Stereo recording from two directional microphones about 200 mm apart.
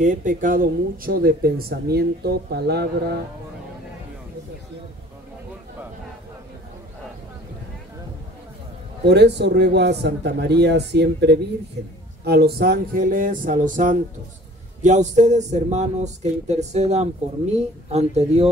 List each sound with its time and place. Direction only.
0.0 s speech: 40° right (ahead or behind); by 3.2 s 55° right (ahead or behind)
9.0 s speech: 60° right (ahead or behind); by 18.5 s 30° right (ahead or behind)